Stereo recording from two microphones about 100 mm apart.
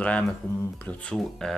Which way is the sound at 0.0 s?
15° left (ahead or behind).